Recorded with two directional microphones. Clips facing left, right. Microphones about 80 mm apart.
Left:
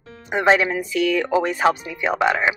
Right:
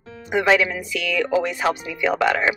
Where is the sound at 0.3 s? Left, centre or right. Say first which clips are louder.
Left 1 dB; left.